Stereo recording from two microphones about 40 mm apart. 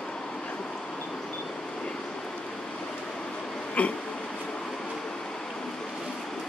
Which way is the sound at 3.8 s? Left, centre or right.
Left.